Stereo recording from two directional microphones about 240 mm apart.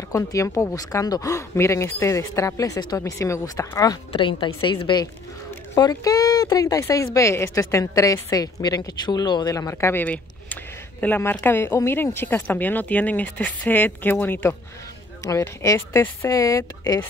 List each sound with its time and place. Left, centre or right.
0.1 s a woman's voice: centre